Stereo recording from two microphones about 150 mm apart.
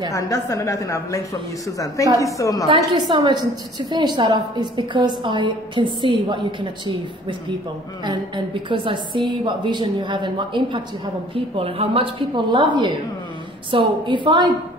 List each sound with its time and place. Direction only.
0.1 s a woman's voice: 20° left (ahead or behind)
3.1 s a woman's voice: 30° right (ahead or behind)
8.0 s a woman's voice: 30° right (ahead or behind)